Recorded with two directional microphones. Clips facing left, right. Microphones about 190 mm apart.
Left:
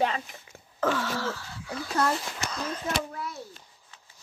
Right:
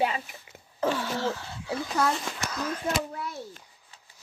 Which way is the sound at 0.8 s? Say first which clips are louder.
Right 1 dB; 20° right (ahead or behind).